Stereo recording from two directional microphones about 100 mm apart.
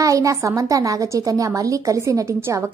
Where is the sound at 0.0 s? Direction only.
35° right (ahead or behind).